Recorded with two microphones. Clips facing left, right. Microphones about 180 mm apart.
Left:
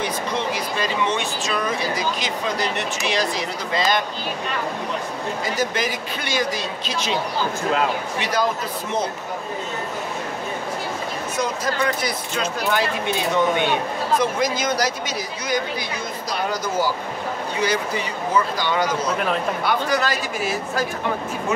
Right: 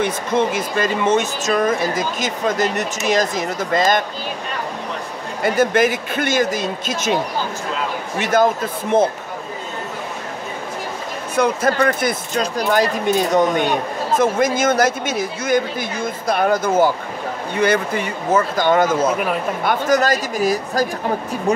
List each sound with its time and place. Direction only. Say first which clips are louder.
0.0 s speech: right 6 dB; 50° right (ahead or behind)
5.4 s speech: right 10 dB; 55° right (ahead or behind)
8.2 s speech: right 8 dB; 50° right (ahead or behind)
11.3 s speech: right 8 dB; 55° right (ahead or behind)
12.4 s speech: right 5 dB; 40° right (ahead or behind)